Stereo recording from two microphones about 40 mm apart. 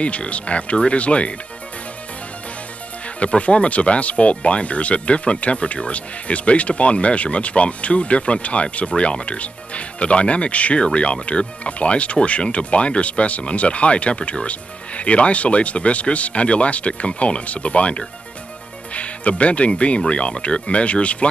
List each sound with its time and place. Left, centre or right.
0.0 s speech: left
3.2 s speech: left